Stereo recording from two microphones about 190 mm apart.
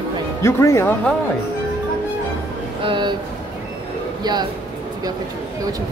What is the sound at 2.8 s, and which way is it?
Speech, 25° right (ahead or behind).